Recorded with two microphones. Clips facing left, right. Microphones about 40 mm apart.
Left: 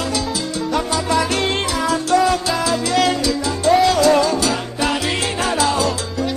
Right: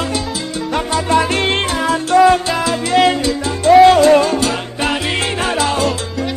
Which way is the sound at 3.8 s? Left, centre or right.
Right.